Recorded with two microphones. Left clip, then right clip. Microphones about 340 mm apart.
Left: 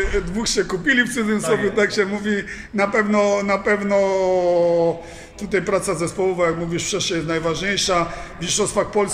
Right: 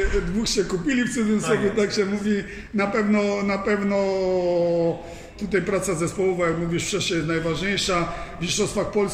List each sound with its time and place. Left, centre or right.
0.4 s a man's voice: left
4.6 s a sound: left
5.5 s a man's voice: centre